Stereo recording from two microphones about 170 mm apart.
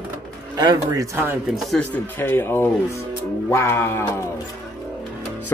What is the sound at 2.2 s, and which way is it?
Music, 15° left (ahead or behind).